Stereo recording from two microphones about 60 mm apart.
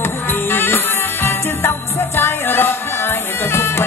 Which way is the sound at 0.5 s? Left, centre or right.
Left.